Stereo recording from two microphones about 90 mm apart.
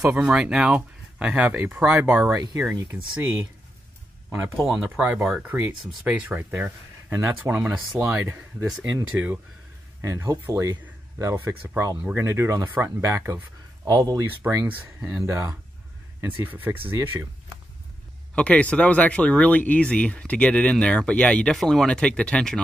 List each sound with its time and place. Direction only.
0.0 s speech: 10° right (ahead or behind)
2.7 s speech: 30° right (ahead or behind)
4.6 s speech: 5° right (ahead or behind)
5.0 s speech: 20° right (ahead or behind)
10.0 s speech: 35° right (ahead or behind)
13.8 s speech: 40° right (ahead or behind)
14.4 s speech: 15° right (ahead or behind)
16.2 s speech: 20° right (ahead or behind)
18.3 s speech: 15° left (ahead or behind)